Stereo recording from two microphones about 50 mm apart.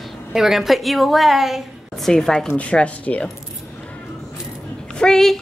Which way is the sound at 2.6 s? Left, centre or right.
Left.